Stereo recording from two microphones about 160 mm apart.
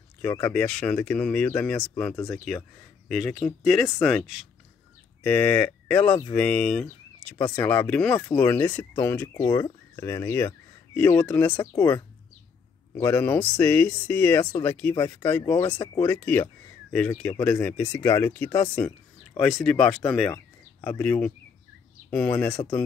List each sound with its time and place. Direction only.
0.5 s speech: 5° left (ahead or behind)
7.4 s speech: 20° left (ahead or behind)
7.7 s speech: 10° left (ahead or behind)
11.6 s speech: 25° left (ahead or behind)